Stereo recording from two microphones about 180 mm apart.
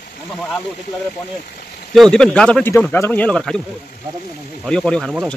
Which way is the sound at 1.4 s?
50° left (ahead or behind).